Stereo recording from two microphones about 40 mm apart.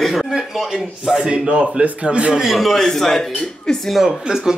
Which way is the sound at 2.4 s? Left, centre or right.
Centre.